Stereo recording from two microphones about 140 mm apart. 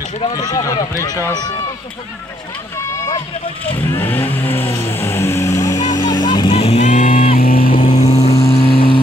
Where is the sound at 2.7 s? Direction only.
20° left (ahead or behind).